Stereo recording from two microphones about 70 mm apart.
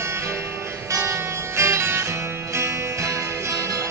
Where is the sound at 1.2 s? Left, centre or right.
Right.